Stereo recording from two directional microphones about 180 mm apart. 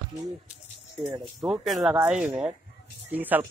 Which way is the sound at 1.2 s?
Centre (ahead or behind).